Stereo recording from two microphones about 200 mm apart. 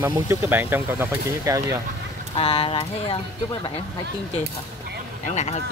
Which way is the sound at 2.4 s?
25° left (ahead or behind).